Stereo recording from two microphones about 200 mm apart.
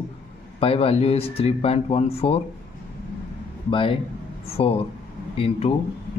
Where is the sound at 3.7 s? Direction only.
25° left (ahead or behind).